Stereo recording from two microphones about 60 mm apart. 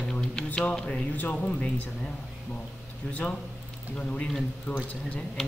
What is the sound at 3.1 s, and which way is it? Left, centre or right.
Speech, left.